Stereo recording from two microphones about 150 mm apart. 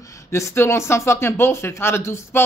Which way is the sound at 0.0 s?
20° left (ahead or behind).